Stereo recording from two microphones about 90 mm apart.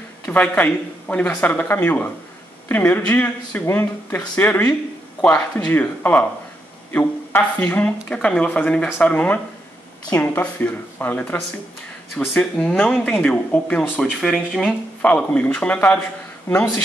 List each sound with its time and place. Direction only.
0.3 s speech: 15° left (ahead or behind)
14.2 s speech: centre (ahead or behind)
15.0 s speech: 15° left (ahead or behind)